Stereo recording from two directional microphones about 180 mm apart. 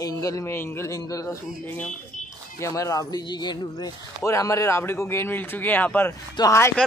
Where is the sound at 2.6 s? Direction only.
20° left (ahead or behind).